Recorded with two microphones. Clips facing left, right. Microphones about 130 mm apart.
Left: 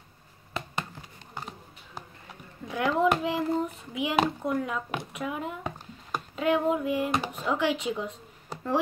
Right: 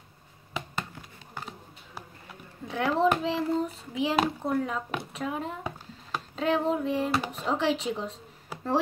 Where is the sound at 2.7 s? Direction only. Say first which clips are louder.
Even; 30° right (ahead or behind).